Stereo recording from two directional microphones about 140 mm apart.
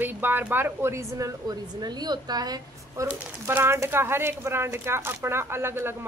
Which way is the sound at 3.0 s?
15° right (ahead or behind).